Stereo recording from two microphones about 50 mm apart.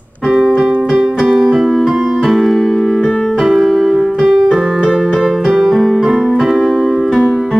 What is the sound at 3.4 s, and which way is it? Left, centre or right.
Music, centre.